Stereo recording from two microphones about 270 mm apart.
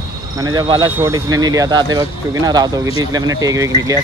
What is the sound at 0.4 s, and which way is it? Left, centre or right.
Speech, centre.